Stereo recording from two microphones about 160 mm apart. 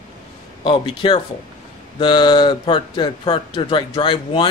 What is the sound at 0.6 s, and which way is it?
A man's voice, 30° left (ahead or behind).